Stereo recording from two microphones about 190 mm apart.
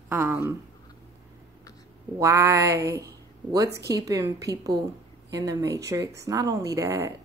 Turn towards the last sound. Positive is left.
turn(degrees=-15)  # may be behind; listen again after turning